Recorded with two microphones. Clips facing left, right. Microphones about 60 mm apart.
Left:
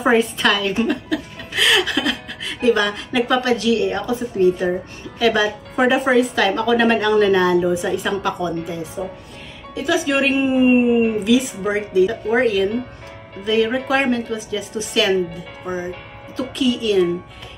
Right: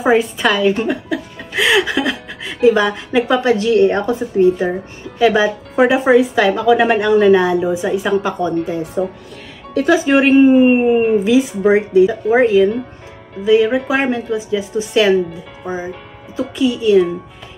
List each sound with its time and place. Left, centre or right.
0.0 s a woman's voice: centre
0.8 s music: centre
2.7 s speech: centre; by 4.2 s right
4.4 s a woman's voice: right
8.5 s speech: right
9.8 s speech: right
10.1 s speech: right